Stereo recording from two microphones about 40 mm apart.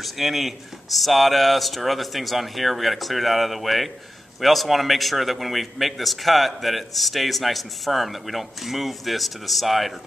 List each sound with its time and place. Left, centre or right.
0.0 s a man's voice: centre